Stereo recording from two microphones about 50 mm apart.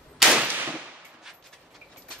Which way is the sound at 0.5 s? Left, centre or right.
Right.